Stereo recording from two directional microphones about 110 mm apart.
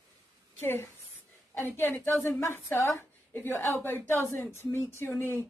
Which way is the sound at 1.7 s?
20° left (ahead or behind).